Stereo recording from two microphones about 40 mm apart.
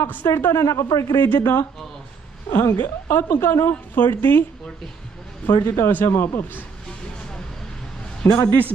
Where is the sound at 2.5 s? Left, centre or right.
Left.